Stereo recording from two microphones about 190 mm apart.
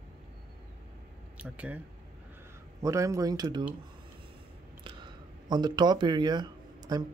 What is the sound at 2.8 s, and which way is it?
Speech, 15° right (ahead or behind).